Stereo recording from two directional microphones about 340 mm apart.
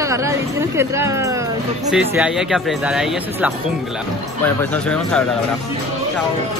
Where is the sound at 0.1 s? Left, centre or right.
Centre.